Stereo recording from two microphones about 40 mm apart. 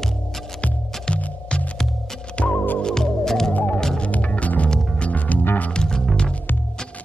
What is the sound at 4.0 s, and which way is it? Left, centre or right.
Music, left.